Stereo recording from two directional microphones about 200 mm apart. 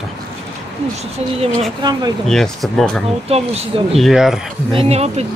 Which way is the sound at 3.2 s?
30° right (ahead or behind).